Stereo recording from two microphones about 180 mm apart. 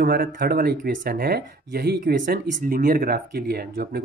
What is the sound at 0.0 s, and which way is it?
Speech, 55° right (ahead or behind).